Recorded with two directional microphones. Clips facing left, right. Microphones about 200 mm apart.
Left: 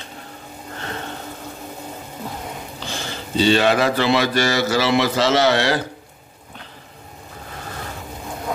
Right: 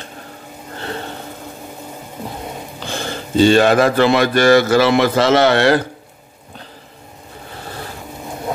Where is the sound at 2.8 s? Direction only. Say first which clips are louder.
Right 6 dB; 50° right (ahead or behind).